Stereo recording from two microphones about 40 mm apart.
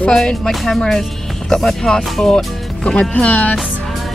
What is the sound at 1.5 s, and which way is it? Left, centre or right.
Speech, centre.